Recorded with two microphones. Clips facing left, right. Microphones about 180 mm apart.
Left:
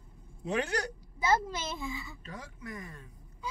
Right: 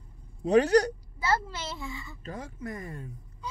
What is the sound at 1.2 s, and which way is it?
A woman's voice, 15° left (ahead or behind).